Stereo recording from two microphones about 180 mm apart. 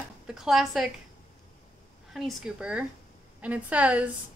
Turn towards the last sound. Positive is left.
turn(degrees=-5)  # may be behind; listen again after turning